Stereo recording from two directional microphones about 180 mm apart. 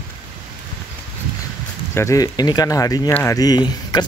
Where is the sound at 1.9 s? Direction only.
15° left (ahead or behind).